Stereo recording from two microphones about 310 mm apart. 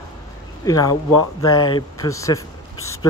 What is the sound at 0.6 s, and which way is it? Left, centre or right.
Speech, centre.